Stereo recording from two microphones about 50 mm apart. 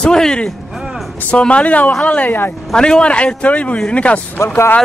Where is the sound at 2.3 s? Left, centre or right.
Left.